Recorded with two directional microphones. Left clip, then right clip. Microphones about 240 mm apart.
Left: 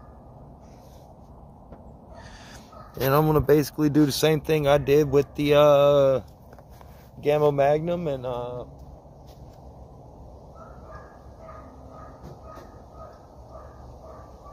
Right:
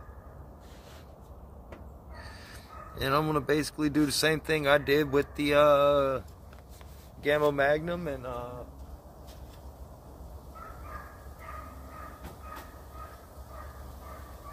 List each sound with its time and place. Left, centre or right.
3.0 s speech: left
7.5 s speech: left